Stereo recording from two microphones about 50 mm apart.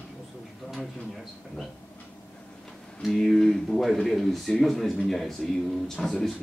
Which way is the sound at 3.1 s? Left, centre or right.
Centre.